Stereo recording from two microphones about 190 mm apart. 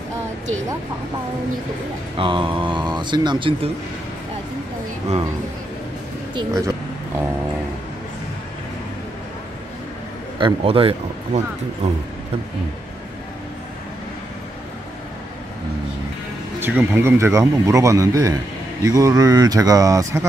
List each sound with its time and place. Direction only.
2.1 s speech: 25° right (ahead or behind)
6.3 s speech: 15° right (ahead or behind)
10.4 s speech: 30° right (ahead or behind)
16.5 s speech: 10° right (ahead or behind)